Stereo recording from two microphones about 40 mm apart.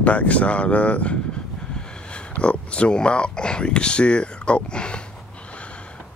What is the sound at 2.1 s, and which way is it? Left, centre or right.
Speech, left.